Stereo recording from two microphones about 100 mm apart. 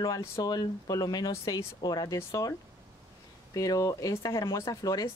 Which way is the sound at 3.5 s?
35° left (ahead or behind).